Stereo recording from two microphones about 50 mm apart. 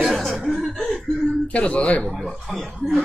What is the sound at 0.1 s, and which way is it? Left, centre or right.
Chuckle, centre.